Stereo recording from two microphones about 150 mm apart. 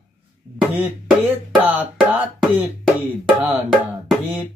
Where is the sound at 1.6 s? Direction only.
10° right (ahead or behind).